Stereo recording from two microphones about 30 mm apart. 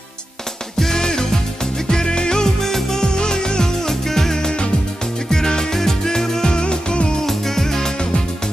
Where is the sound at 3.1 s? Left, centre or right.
Left.